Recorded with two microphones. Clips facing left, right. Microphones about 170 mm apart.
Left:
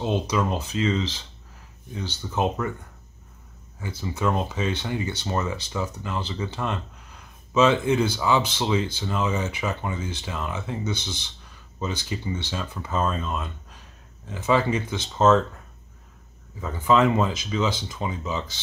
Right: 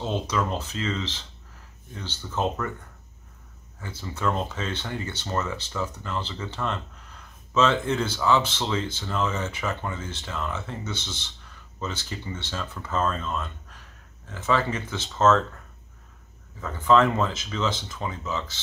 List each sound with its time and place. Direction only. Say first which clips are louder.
0.0 s speech: left 3 dB; 15° left (ahead or behind)
3.8 s speech: left 2 dB; 10° left (ahead or behind)
16.6 s speech: even; 10° left (ahead or behind)